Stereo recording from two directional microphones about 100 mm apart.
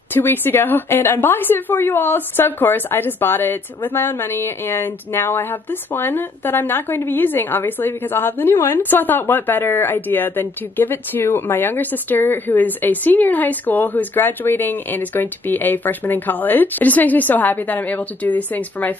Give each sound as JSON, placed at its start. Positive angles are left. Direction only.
{"t": 0.1, "sound": "a woman's voice", "side_deg": 20}